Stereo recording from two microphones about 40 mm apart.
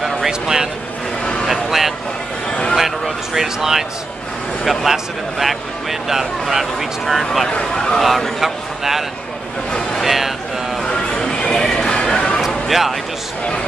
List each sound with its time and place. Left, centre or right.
0.3 s speech: centre
1.2 s vehicle: left
1.5 s vehicle: centre
3.3 s speech: centre
7.7 s speech: centre
8.0 s speech: centre
10.0 s a sound: centre
10.8 s a sound: centre
12.4 s a sound: centre